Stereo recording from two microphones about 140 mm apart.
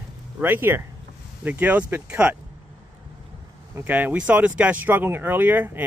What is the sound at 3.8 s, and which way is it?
Speech, 10° right (ahead or behind).